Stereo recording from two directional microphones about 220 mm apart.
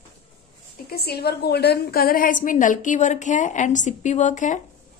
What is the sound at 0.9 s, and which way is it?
A woman's voice, 45° left (ahead or behind).